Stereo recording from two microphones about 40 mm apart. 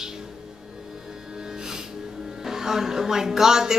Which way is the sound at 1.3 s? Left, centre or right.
Centre.